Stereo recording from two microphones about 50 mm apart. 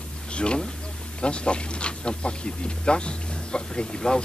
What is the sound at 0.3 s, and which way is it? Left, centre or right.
Speech, left.